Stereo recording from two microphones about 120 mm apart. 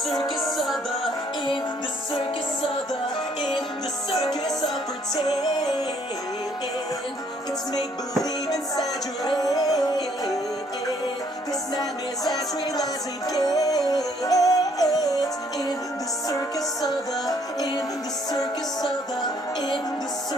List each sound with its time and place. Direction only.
0.6 s music: centre (ahead or behind)
5.1 s music: 35° left (ahead or behind)
9.3 s music: 30° left (ahead or behind)
13.3 s music: 30° left (ahead or behind)
17.3 s music: 30° left (ahead or behind)